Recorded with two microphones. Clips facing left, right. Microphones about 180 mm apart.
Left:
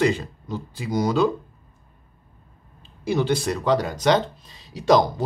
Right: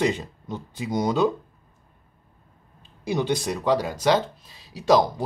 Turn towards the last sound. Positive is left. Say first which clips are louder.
# left 1 dB
turn(degrees=-5)  # may be behind; listen again after turning